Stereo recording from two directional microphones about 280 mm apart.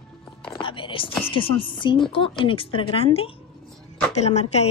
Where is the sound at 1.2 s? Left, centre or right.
Centre.